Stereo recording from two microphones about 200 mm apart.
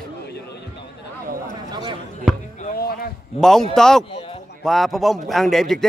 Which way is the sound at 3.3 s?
Centre (ahead or behind).